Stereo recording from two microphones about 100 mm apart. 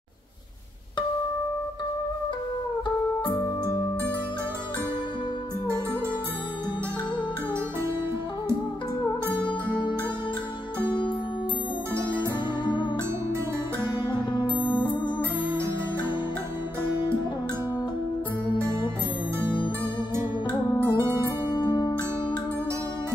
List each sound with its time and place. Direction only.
9.4 s music: 50° left (ahead or behind)
11.9 s music: 25° right (ahead or behind)
13.9 s music: 50° left (ahead or behind)
18.6 s music: 30° right (ahead or behind)
20.8 s music: 25° right (ahead or behind)
21.5 s music: 50° left (ahead or behind)